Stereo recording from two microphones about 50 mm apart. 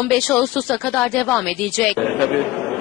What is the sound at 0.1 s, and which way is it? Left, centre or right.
Speech, centre.